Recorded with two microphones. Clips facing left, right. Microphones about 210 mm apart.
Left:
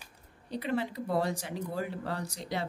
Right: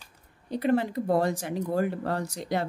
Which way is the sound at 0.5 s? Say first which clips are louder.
Right 7 dB; 50° right (ahead or behind).